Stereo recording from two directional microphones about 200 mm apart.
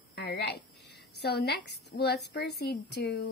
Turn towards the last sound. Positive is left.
turn(degrees=55)  # may be behind; listen again after turning